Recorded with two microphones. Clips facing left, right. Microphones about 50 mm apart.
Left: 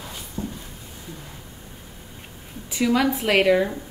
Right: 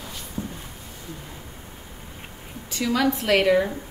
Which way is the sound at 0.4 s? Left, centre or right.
Right.